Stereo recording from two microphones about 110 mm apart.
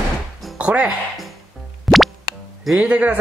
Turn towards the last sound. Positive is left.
turn(degrees=-10)  # may be behind; listen again after turning